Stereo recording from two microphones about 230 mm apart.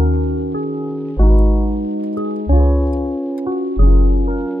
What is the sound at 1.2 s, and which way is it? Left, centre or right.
Music, centre.